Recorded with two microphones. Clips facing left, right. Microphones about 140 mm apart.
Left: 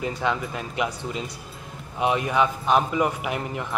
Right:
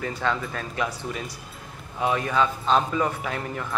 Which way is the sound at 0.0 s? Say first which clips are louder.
Left 1 dB; 15° left (ahead or behind).